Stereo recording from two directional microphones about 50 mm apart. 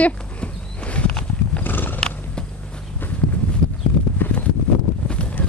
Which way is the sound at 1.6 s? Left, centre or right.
Left.